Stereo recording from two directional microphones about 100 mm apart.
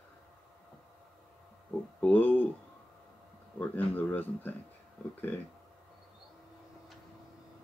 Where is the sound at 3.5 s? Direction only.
15° left (ahead or behind).